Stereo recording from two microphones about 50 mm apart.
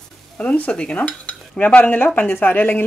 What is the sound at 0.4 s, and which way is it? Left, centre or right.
Stir, left.